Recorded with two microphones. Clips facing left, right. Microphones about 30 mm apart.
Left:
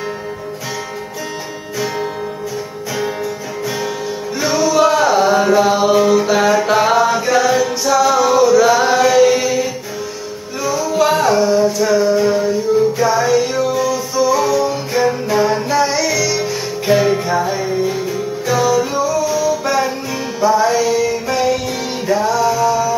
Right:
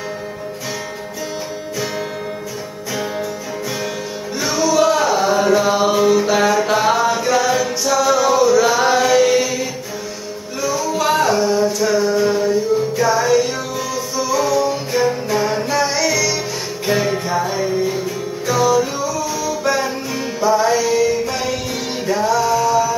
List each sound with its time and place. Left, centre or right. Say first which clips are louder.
4.4 s music: left 2 dB; centre